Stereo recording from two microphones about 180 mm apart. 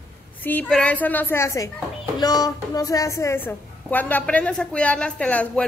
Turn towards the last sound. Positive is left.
turn(degrees=5)  # may be behind; listen again after turning